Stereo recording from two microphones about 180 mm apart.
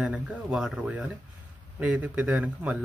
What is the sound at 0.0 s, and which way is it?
A man's voice, 5° right (ahead or behind).